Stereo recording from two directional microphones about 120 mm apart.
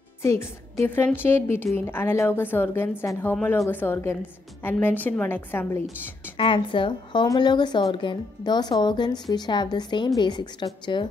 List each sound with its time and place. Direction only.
0.2 s a woman's voice: 25° left (ahead or behind)
6.3 s a woman's voice: 45° left (ahead or behind)